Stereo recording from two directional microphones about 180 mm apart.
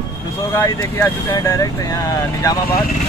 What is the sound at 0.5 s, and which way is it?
Speech, 15° left (ahead or behind).